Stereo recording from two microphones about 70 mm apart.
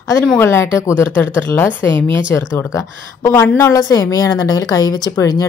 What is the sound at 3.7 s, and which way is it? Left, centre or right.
A woman's voice, left.